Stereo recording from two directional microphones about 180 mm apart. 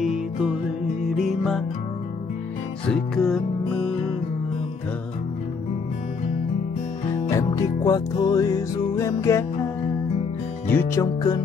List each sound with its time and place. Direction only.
0.0 s music: 5° right (ahead or behind)
2.9 s music: centre (ahead or behind)
7.2 s music: 20° left (ahead or behind)
10.7 s music: 15° left (ahead or behind)